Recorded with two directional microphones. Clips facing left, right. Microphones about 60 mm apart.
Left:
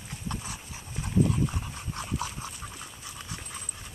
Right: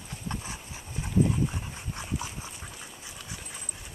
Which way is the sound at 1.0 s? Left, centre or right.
Centre.